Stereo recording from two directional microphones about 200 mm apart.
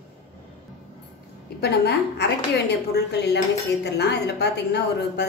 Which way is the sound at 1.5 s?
55° left (ahead or behind).